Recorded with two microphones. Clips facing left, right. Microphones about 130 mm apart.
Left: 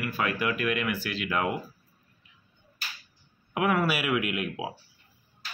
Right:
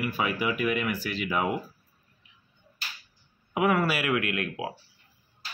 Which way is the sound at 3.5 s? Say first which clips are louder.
Right 1 dB; centre (ahead or behind).